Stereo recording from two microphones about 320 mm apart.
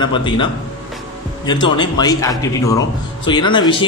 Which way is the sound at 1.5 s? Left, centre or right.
Centre.